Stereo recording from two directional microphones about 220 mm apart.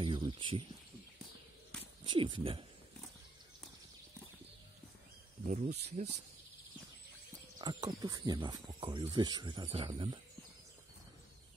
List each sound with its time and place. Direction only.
0.0 s a sound: 25° right (ahead or behind)
2.0 s speech: 20° right (ahead or behind)
5.5 s speech: 30° right (ahead or behind)
7.6 s speech: 20° right (ahead or behind)